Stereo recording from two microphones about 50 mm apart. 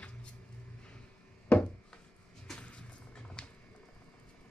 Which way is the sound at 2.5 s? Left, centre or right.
Left.